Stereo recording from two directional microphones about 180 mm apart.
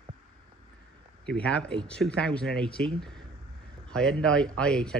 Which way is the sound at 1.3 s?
5° left (ahead or behind).